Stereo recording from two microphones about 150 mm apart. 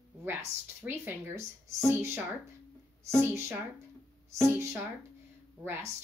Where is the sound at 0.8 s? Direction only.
15° right (ahead or behind).